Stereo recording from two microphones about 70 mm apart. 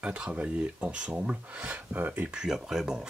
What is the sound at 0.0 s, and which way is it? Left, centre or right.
Speech, centre.